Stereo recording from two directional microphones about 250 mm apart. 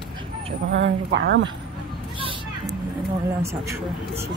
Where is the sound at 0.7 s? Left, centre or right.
Right.